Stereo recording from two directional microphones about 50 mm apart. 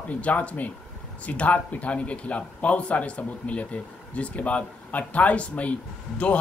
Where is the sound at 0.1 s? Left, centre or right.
Left.